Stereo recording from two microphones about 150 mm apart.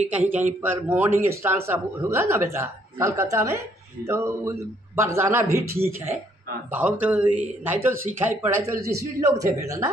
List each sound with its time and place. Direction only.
0.1 s a man's voice: 10° right (ahead or behind)